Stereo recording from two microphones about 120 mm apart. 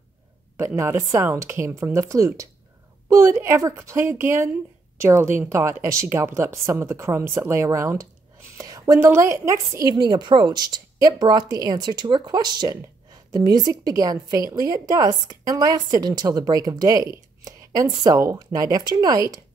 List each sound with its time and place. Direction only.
0.7 s a woman's voice: 25° right (ahead or behind)